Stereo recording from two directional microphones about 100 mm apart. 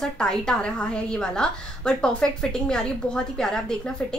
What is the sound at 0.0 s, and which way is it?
A woman's voice, 5° left (ahead or behind).